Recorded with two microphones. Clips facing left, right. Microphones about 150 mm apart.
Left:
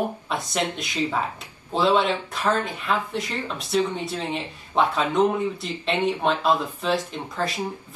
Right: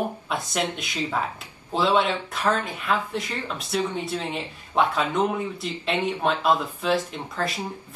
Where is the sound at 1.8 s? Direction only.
Centre (ahead or behind).